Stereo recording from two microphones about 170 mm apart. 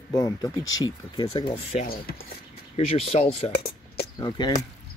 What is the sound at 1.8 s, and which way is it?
Speech, 60° left (ahead or behind).